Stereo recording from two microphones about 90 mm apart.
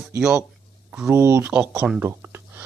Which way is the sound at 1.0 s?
30° right (ahead or behind).